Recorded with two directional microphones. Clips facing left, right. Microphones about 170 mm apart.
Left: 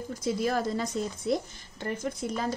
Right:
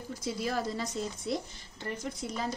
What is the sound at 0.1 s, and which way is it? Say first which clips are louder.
A woman's voice: left 5 dB; 50° left (ahead or behind).